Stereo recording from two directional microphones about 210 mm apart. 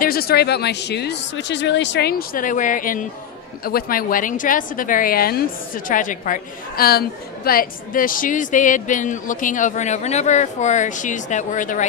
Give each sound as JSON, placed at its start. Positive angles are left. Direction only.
{"t": 0.0, "sound": "a woman's voice", "side_deg": 45}